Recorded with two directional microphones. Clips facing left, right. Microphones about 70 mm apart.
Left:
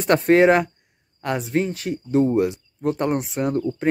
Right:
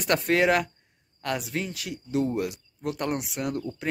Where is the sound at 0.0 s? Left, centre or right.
Left.